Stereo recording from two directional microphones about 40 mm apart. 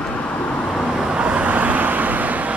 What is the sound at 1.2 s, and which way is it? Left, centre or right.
Vehicle, right.